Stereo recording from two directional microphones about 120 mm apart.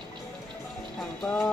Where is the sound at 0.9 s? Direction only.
5° left (ahead or behind).